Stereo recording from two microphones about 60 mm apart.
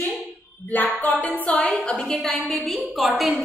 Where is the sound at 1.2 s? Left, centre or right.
Centre.